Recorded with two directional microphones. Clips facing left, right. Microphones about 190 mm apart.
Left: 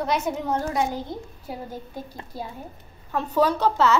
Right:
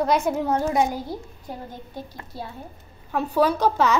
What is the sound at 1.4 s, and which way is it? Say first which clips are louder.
Speech: left 2 dB; 10° left (ahead or behind).